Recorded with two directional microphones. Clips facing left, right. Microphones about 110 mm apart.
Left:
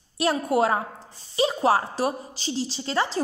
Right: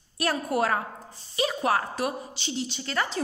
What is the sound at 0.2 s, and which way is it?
A woman's voice, 25° left (ahead or behind).